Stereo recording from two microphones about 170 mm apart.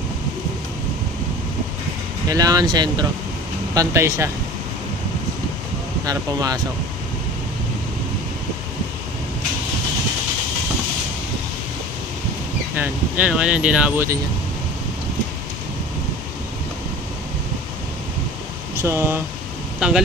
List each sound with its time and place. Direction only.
2.2 s speech: 20° right (ahead or behind)
6.0 s speech: 20° right (ahead or behind)
12.7 s speech: 10° right (ahead or behind)
18.8 s speech: 15° right (ahead or behind)